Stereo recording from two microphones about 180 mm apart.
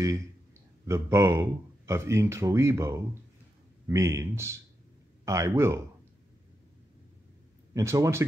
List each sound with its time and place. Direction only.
0.8 s speech: 15° right (ahead or behind)
7.7 s speech: 15° right (ahead or behind)